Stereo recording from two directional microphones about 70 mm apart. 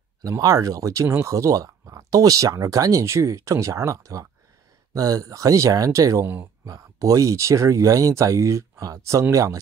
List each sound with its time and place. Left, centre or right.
0.2 s speech: right